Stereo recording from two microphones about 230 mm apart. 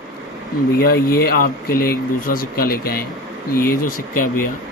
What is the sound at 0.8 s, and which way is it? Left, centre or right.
Speech, left.